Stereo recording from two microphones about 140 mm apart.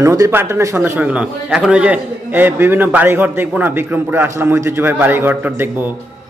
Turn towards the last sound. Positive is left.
turn(degrees=-15)  # may be behind; listen again after turning